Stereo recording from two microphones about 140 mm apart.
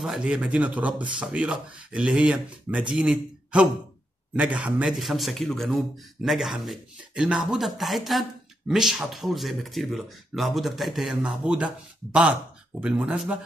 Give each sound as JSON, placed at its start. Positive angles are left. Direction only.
{"t": 0.0, "sound": "a man's voice", "side_deg": -5}